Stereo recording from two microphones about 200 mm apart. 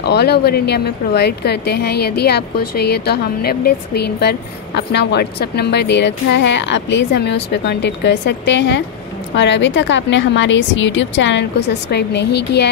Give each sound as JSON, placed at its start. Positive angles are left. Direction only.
{"t": 0.1, "sound": "speech", "side_deg": 55}